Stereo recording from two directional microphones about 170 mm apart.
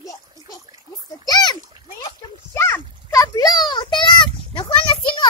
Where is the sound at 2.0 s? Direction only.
15° left (ahead or behind).